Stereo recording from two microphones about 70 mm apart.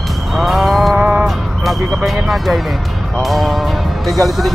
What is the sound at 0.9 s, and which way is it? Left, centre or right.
Music, centre.